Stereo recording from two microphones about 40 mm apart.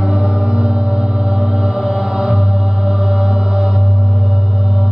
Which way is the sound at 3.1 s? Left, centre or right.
Centre.